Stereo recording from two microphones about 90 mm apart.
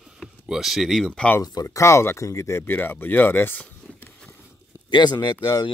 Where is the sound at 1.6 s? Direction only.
35° left (ahead or behind).